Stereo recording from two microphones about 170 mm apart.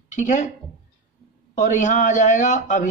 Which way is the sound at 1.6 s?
45° left (ahead or behind).